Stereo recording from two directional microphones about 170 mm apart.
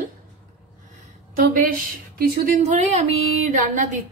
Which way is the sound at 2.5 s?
45° right (ahead or behind).